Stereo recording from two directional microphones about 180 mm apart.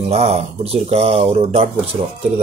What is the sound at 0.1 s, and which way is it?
A man's voice, 35° right (ahead or behind).